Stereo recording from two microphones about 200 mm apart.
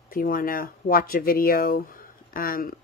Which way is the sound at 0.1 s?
45° left (ahead or behind).